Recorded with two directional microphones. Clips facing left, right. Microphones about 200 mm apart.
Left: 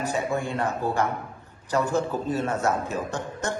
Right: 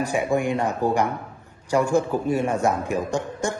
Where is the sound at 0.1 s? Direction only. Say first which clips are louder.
Right 5 dB; 15° right (ahead or behind).